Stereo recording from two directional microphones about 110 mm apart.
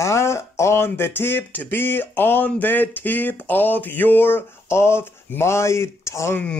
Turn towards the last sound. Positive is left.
turn(degrees=25)  # may be behind; listen again after turning